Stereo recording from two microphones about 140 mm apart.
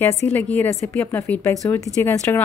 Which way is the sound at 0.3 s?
15° left (ahead or behind).